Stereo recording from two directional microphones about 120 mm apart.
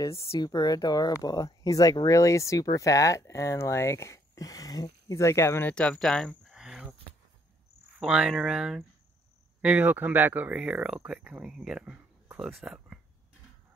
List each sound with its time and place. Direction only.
0.0 s speech: 25° left (ahead or behind); by 7.0 s 5° right (ahead or behind)
8.0 s speech: 5° right (ahead or behind)